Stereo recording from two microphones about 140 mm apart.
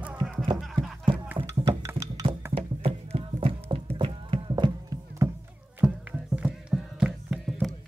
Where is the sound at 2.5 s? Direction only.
45° right (ahead or behind).